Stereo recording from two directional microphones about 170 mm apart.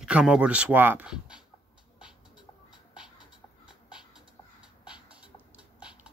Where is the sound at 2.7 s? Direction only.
5° right (ahead or behind).